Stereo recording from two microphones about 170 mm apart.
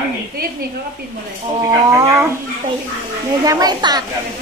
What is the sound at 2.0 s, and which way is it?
Speech, 15° right (ahead or behind).